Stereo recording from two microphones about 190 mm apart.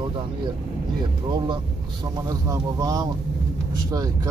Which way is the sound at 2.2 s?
20° right (ahead or behind).